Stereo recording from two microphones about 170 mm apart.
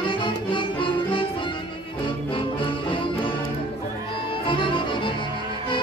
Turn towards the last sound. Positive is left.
turn(degrees=30)  # may be behind; listen again after turning